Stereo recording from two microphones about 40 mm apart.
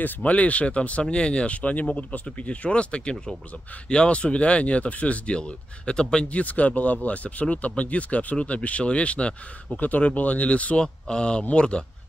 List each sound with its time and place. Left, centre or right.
0.2 s speech: left
6.2 s speech: left
9.8 s speech: left
10.8 s speech: left